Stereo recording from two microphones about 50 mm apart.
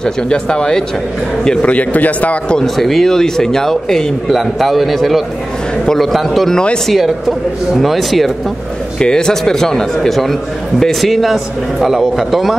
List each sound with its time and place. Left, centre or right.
0.0 s speech: centre
1.7 s a man's voice: left
2.5 s a man's voice: centre
6.5 s a man's voice: centre
6.9 s a man's voice: centre
9.0 s a man's voice: centre